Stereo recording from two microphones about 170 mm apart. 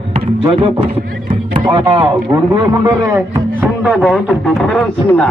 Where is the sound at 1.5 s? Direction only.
25° right (ahead or behind).